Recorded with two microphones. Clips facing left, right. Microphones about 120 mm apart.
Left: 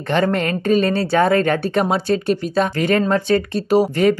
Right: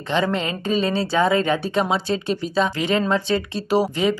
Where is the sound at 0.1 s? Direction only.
55° left (ahead or behind).